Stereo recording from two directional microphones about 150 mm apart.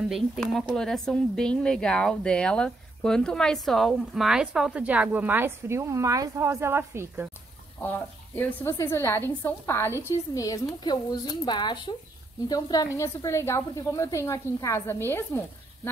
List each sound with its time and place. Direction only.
0.1 s speech: centre (ahead or behind); by 7.2 s 15° right (ahead or behind)
8.4 s a woman's voice: 15° left (ahead or behind)